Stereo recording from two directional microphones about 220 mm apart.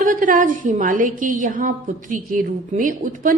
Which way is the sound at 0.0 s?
35° right (ahead or behind).